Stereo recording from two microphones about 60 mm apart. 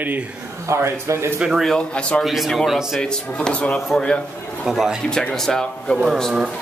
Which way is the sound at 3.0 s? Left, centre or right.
Centre.